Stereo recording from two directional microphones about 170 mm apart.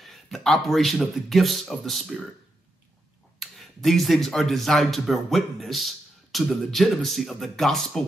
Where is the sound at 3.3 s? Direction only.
Centre (ahead or behind).